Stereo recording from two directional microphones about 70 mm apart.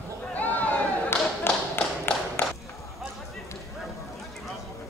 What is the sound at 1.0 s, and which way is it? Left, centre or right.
Tap, left.